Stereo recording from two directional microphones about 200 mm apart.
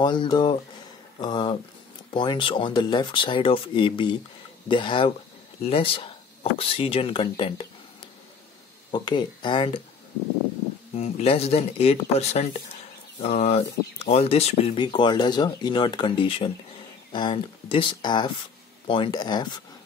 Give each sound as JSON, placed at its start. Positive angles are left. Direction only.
{"t": 0.0, "sound": "speech", "side_deg": 20}
{"t": 8.9, "sound": "speech", "side_deg": 25}
{"t": 11.0, "sound": "speech", "side_deg": 30}